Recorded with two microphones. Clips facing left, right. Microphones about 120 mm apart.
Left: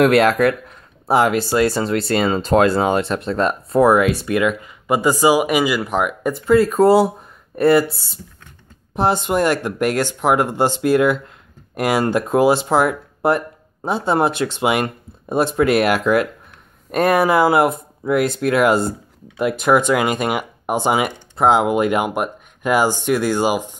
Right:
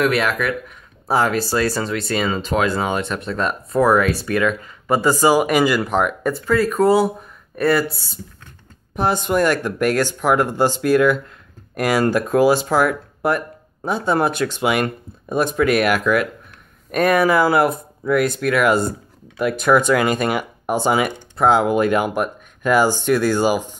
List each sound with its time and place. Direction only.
0.2 s a sound: 35° left (ahead or behind)
1.1 s speech: 20° left (ahead or behind)
6.3 s speech: 25° left (ahead or behind)